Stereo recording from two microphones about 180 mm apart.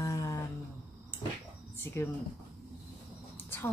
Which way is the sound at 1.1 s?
10° left (ahead or behind).